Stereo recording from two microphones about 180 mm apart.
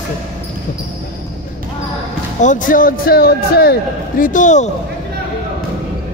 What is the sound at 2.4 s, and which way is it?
A man's voice, 45° left (ahead or behind).